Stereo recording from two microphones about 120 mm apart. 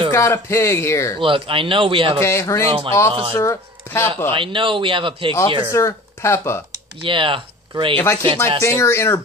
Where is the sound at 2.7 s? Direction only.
50° right (ahead or behind).